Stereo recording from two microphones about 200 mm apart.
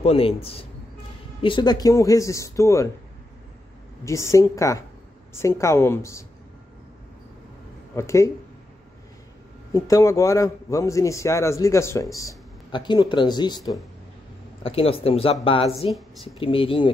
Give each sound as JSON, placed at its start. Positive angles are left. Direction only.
{"t": 0.0, "sound": "a man's voice", "side_deg": 30}
{"t": 4.0, "sound": "a man's voice", "side_deg": 15}
{"t": 7.9, "sound": "a man's voice", "side_deg": 15}
{"t": 9.7, "sound": "a man's voice", "side_deg": 15}